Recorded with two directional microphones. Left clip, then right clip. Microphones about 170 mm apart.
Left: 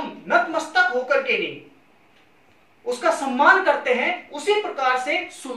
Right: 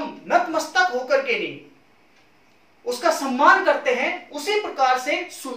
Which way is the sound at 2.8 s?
10° right (ahead or behind).